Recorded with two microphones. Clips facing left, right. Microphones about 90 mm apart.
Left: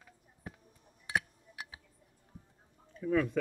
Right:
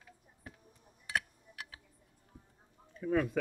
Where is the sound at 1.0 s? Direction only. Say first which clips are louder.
Left 2 dB; 15° left (ahead or behind).